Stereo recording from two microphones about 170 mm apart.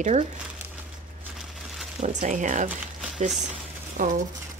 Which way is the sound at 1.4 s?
Centre (ahead or behind).